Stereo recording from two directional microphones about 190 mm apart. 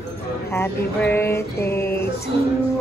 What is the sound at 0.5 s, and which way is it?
Speech, 10° left (ahead or behind).